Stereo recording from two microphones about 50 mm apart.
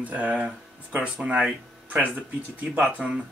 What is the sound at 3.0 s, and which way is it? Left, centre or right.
Speech, centre.